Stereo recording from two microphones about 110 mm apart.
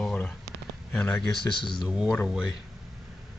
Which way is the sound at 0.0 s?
10° left (ahead or behind).